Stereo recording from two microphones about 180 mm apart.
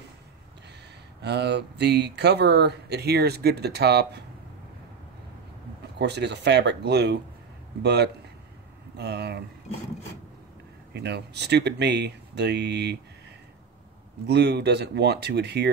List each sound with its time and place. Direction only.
1.2 s speech: 70° right (ahead or behind)
5.9 s speech: 70° right (ahead or behind)
10.9 s speech: 65° right (ahead or behind)
14.2 s speech: 70° right (ahead or behind)